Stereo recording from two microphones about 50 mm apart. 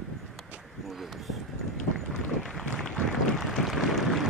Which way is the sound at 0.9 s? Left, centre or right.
Centre.